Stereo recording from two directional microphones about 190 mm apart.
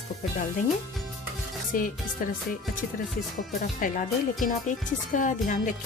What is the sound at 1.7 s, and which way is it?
Speech, 45° left (ahead or behind).